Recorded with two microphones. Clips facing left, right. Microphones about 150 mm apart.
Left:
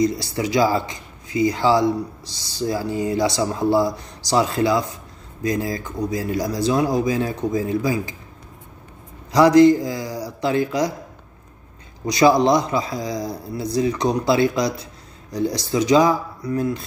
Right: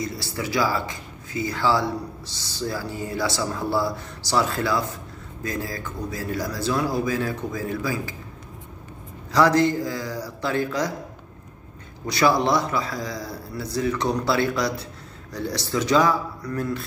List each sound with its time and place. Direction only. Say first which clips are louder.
0.0 s speech: left 8 dB; 15° left (ahead or behind)
9.3 s speech: left 7 dB; 15° left (ahead or behind)
12.1 s speech: left 5 dB; 15° left (ahead or behind)